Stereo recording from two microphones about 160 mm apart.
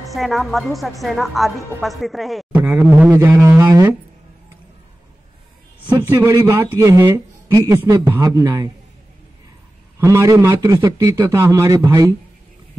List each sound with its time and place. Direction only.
0.0 s a woman's voice: centre (ahead or behind)
2.5 s speech: 10° right (ahead or behind)
3.1 s a sound: 10° right (ahead or behind)
5.9 s speech: 15° right (ahead or behind)
9.9 s a man's voice: 20° right (ahead or behind)